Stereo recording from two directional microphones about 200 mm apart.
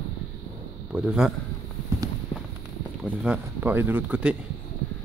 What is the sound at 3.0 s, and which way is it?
Speech, 5° right (ahead or behind).